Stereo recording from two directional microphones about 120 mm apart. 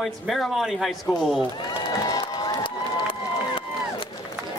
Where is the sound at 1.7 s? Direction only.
35° left (ahead or behind).